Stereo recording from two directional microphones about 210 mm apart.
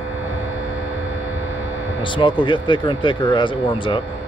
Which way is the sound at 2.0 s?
20° left (ahead or behind).